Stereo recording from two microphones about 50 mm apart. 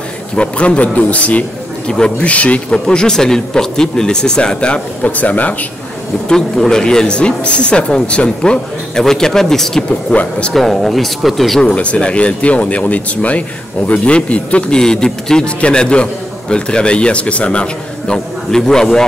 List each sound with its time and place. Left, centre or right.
0.4 s a man's voice: left
1.9 s a man's voice: centre
2.7 s speech: centre
5.1 s speech: left
6.2 s a man's voice: centre
9.8 s a man's voice: left
10.5 s speech: centre
11.6 s a man's voice: left
14.8 s a man's voice: centre